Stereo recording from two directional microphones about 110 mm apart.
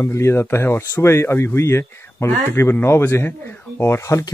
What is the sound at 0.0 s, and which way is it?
Speech, 25° left (ahead or behind).